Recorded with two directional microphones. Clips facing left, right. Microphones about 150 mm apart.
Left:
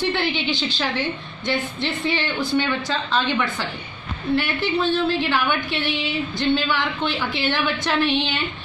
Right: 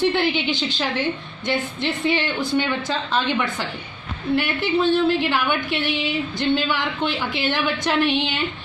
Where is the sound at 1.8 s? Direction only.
15° right (ahead or behind).